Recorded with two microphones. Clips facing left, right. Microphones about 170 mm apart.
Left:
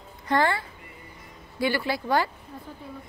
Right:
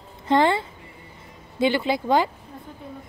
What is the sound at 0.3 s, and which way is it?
A woman's voice, 20° right (ahead or behind).